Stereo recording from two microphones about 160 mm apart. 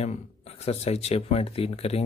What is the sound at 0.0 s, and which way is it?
Speech, 40° left (ahead or behind).